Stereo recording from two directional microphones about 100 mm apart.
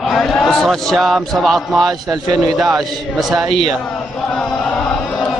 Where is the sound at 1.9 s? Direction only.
40° right (ahead or behind).